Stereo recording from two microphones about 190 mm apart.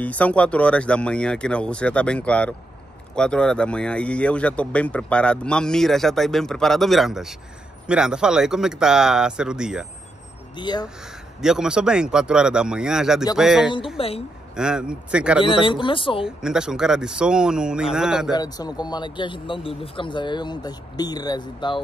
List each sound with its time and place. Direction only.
0.0 s speech: 10° left (ahead or behind)
10.5 s speech: 25° left (ahead or behind)
11.4 s speech: 5° right (ahead or behind)
13.9 s a woman's voice: 30° left (ahead or behind)
14.5 s speech: 5° right (ahead or behind)
15.4 s speech: 25° left (ahead or behind)
16.3 s speech: 5° right (ahead or behind)
18.3 s speech: 20° left (ahead or behind)